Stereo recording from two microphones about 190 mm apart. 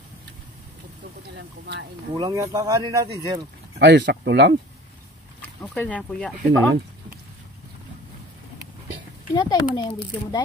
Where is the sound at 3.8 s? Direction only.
65° right (ahead or behind).